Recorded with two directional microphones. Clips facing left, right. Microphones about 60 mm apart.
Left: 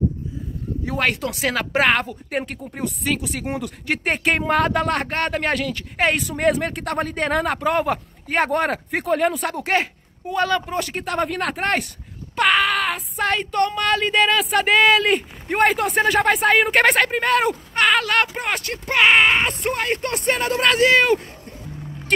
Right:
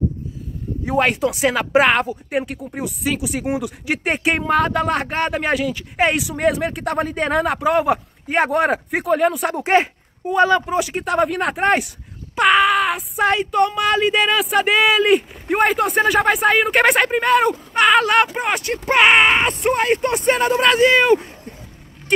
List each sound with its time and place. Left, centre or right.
0.8 s speech: right; by 9.5 s centre
9.5 s speech: right; by 17.9 s centre
17.9 s speech: centre
18.7 s speech: right; by 21.3 s centre